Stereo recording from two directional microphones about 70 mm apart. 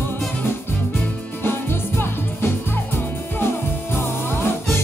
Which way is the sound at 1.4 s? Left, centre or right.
Left.